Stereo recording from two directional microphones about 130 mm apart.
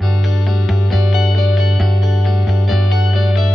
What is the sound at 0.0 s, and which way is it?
Music, centre (ahead or behind).